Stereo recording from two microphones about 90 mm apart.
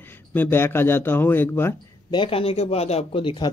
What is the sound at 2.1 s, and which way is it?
Speech, 75° left (ahead or behind).